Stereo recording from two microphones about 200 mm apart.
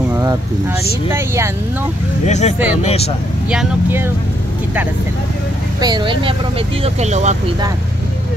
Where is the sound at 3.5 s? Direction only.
5° right (ahead or behind).